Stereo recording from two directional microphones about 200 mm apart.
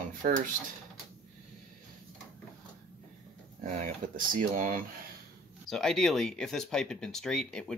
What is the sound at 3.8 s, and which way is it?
Speech, 40° right (ahead or behind).